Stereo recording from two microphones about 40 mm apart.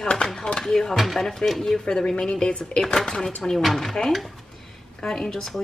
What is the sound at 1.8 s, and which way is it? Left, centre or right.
Speech, centre.